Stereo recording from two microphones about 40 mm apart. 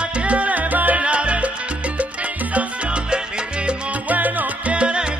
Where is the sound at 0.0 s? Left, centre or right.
Right.